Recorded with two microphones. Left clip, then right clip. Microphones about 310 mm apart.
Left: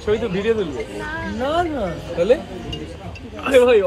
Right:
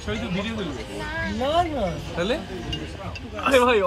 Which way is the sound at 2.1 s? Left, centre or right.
Centre.